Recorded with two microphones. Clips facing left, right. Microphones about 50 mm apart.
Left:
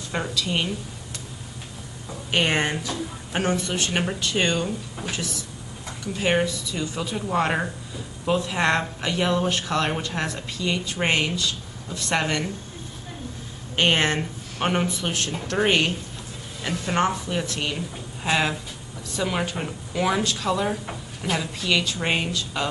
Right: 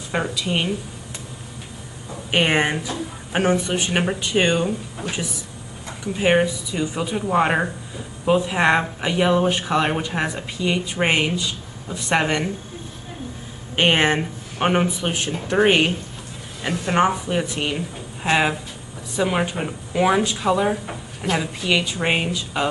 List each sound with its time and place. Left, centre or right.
0.1 s speech: centre
2.3 s speech: centre
6.1 s speech: centre
13.7 s speech: centre